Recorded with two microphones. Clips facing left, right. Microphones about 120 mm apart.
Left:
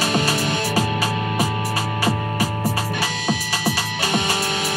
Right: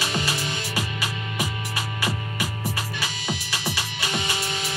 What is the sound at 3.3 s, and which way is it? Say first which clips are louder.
Music: left 7 dB; 60° left (ahead or behind).